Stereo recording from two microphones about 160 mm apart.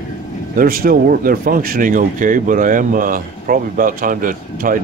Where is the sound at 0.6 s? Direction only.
65° right (ahead or behind).